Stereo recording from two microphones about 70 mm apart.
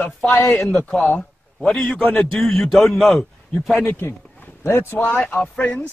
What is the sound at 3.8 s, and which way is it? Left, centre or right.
A man's voice, left.